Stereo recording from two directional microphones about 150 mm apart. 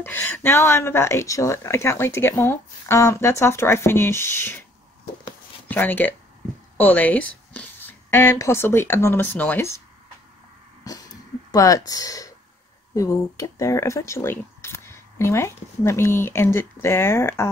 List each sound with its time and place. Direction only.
0.0 s speech: 15° left (ahead or behind)
5.7 s a woman's voice: 10° left (ahead or behind)
11.5 s speech: 25° left (ahead or behind)